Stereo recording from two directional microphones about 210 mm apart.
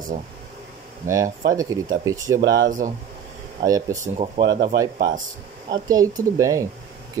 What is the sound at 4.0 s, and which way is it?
Speech, 35° right (ahead or behind).